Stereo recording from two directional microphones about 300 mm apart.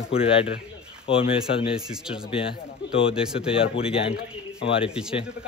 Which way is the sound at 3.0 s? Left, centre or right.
Centre.